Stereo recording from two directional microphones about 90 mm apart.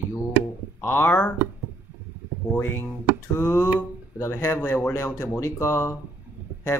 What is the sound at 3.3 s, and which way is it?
Speech, 30° left (ahead or behind).